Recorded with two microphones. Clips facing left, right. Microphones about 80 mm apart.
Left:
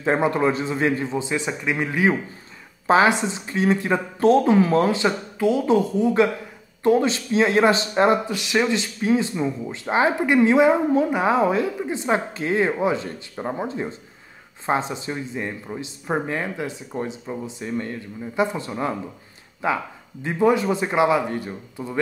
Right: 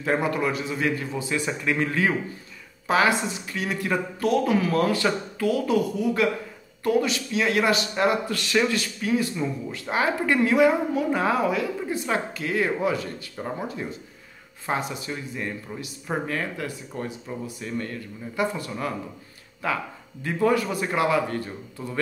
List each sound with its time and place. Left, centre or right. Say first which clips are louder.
0.0 s speech: left 4 dB; left
8.3 s speech: left 2 dB; centre